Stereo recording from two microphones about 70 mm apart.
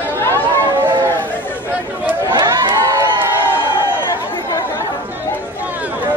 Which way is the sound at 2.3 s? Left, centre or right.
Right.